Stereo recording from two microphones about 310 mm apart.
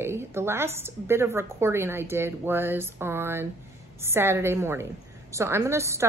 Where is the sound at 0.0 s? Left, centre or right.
Centre.